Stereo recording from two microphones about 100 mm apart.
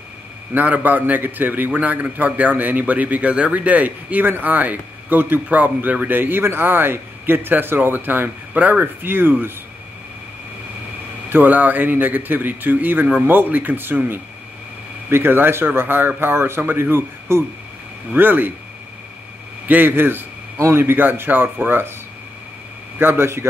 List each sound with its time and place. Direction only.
0.6 s a man's voice: 15° right (ahead or behind)
11.2 s speech: 20° right (ahead or behind)
19.7 s speech: 20° right (ahead or behind)
22.9 s a man's voice: 25° right (ahead or behind)